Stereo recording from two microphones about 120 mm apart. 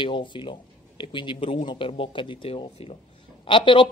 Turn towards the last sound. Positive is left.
turn(degrees=45)  # may be behind; listen again after turning